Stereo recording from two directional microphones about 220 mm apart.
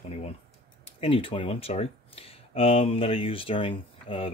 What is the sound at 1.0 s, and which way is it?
Speech, 25° left (ahead or behind).